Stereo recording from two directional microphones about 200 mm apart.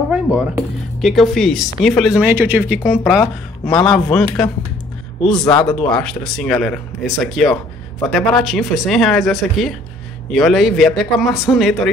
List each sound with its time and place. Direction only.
0.1 s speech: 5° right (ahead or behind)
5.4 s speech: 20° left (ahead or behind)
5.7 s speech: 5° left (ahead or behind)